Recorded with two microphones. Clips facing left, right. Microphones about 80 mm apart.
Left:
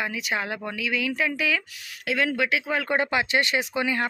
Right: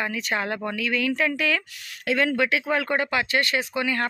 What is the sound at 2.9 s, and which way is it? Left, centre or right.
Speech, left.